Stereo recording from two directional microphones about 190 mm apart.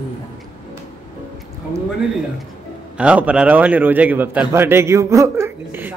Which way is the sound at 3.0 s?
5° right (ahead or behind).